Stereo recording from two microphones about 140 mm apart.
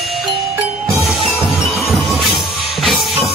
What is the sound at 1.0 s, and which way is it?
Music, centre (ahead or behind).